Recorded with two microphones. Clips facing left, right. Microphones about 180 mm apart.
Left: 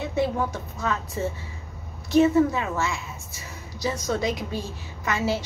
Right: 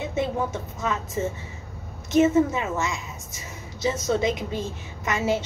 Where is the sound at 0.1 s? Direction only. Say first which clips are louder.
Left 2 dB; 20° right (ahead or behind).